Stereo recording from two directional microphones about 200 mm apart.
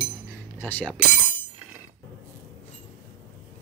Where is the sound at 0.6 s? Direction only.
10° left (ahead or behind).